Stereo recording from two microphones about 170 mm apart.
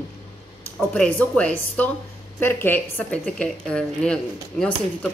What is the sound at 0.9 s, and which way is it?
A woman's voice, 5° left (ahead or behind).